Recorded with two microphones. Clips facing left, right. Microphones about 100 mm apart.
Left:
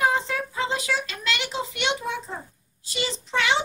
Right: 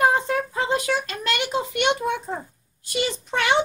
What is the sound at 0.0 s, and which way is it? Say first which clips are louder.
Child singing: right 4 dB; 50° right (ahead or behind).